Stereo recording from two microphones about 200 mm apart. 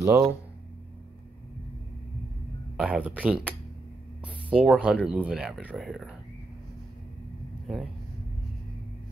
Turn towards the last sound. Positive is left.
turn(degrees=0)  # may be behind; listen again after turning